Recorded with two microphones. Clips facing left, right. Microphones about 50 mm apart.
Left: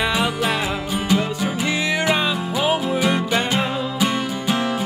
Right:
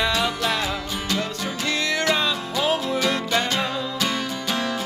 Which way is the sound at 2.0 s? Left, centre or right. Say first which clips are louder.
Left 2 dB; centre.